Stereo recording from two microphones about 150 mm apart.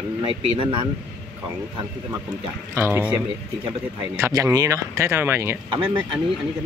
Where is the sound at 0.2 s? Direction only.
35° right (ahead or behind).